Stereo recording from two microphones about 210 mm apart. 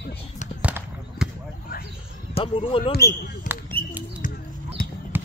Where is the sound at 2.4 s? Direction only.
25° left (ahead or behind).